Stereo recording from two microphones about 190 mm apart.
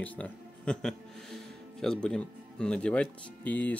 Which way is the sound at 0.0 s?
10° left (ahead or behind).